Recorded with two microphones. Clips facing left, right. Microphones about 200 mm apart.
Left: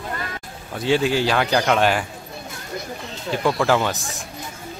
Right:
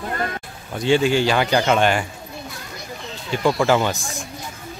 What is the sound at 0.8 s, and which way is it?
Speech, centre (ahead or behind).